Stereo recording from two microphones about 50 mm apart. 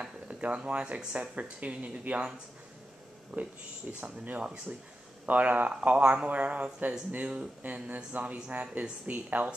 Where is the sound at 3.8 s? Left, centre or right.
Right.